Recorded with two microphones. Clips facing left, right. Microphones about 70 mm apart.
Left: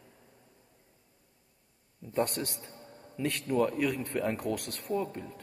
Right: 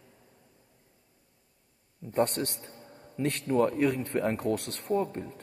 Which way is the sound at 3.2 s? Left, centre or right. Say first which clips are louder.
Right 3 dB; right.